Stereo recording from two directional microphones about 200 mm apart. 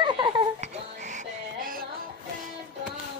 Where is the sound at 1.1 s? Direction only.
45° right (ahead or behind).